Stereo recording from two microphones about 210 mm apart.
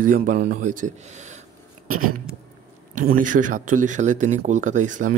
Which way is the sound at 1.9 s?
90° right.